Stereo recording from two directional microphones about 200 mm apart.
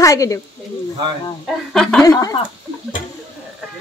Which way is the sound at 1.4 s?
5° left (ahead or behind).